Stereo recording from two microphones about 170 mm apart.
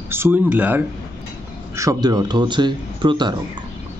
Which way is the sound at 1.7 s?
20° right (ahead or behind).